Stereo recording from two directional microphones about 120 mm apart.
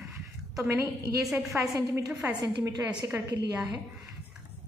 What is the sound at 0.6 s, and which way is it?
Speech, 20° right (ahead or behind).